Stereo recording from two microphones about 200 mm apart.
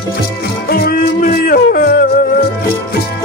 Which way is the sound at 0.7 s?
50° left (ahead or behind).